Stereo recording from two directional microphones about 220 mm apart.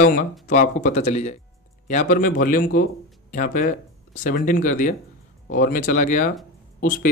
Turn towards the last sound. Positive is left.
turn(degrees=35)  # may be behind; listen again after turning